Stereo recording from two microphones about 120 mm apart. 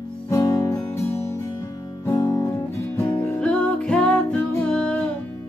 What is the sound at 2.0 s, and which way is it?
Music, 30° left (ahead or behind).